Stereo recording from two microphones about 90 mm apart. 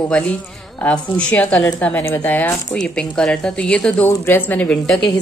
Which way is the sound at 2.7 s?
10° left (ahead or behind).